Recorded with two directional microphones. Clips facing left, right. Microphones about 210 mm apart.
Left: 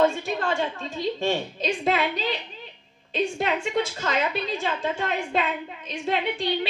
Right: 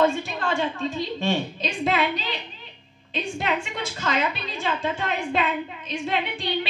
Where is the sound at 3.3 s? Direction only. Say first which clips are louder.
Left 1 dB; 45° left (ahead or behind).